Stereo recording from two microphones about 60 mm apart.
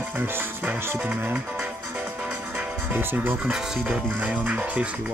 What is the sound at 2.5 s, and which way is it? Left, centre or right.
Speech, right.